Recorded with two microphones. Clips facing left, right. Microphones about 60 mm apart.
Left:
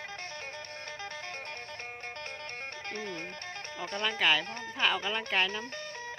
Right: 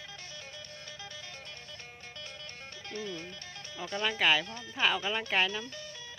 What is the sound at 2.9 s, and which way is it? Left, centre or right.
Music, left.